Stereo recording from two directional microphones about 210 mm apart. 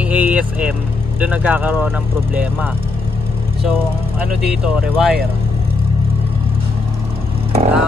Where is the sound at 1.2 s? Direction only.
5° right (ahead or behind).